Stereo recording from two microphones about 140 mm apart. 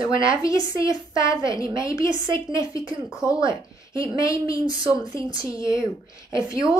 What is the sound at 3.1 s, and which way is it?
A woman's voice, 25° left (ahead or behind).